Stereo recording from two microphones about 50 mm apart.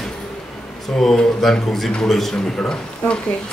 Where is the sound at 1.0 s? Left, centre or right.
Centre.